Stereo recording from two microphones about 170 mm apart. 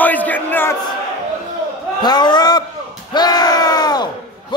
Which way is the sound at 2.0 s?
25° left (ahead or behind).